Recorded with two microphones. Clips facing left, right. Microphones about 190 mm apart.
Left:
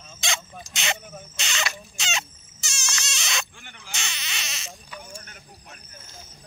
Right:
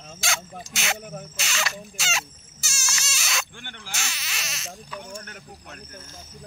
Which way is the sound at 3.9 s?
5° right (ahead or behind).